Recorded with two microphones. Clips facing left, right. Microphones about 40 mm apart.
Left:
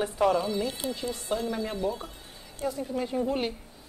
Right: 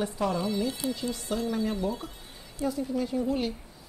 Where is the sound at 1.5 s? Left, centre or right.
Centre.